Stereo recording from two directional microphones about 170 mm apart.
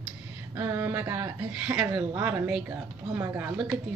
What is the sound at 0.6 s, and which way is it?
A woman's voice, 10° right (ahead or behind).